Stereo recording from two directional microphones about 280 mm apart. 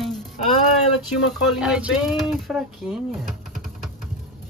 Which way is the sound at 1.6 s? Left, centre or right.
Centre.